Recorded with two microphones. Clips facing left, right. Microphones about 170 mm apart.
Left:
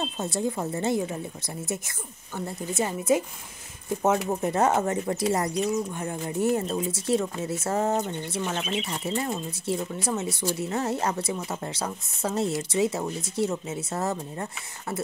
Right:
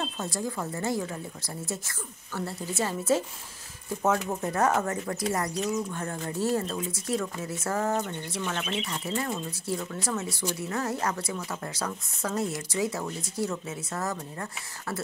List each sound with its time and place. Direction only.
0.0 s speech: 20° left (ahead or behind)